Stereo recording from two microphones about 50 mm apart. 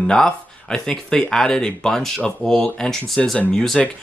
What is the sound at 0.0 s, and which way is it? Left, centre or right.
Speech, centre.